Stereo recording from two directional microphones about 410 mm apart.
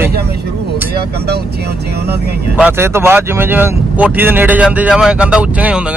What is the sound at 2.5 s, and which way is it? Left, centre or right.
Speech, centre.